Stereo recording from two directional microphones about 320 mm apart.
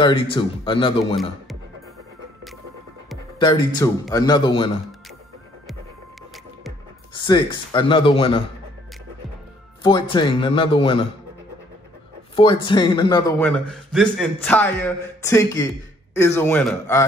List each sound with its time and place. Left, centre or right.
0.0 s a man's voice: centre
3.3 s a man's voice: centre
7.2 s a man's voice: centre
9.8 s a man's voice: centre
12.4 s a man's voice: centre